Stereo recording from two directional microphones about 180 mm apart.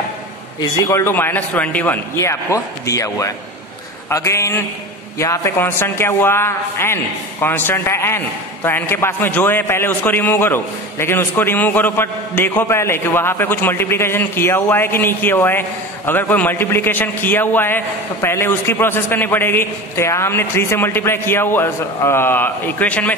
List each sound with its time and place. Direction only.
0.6 s a man's voice: 20° left (ahead or behind)